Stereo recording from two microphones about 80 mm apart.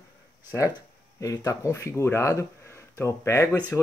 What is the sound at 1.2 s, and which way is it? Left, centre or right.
Speech, left.